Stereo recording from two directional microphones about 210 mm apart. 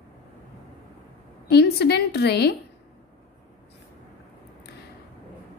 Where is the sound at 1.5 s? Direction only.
50° left (ahead or behind).